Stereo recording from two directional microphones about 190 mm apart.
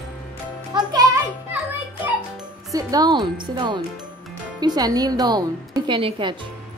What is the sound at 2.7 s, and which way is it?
A woman's voice, 20° right (ahead or behind).